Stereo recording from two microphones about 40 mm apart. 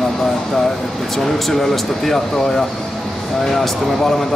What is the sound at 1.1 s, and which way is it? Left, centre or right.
Speech, centre.